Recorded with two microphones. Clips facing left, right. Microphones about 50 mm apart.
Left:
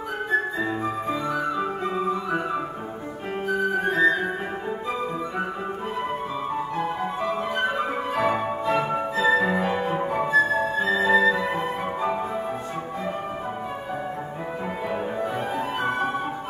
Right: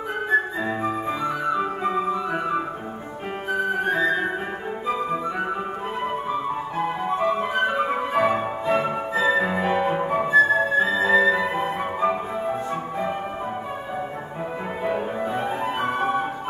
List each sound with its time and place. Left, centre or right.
1.0 s flute: right
3.7 s flute: centre
6.8 s music: centre
14.9 s music: centre